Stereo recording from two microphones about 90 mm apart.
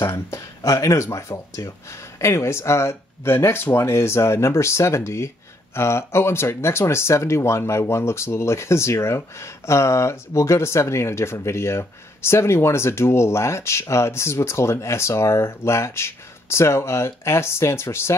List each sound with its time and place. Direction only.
0.0 s speech: 30° left (ahead or behind)